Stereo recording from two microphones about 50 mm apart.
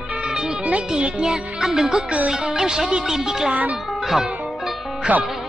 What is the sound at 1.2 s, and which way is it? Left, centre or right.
Speech, centre.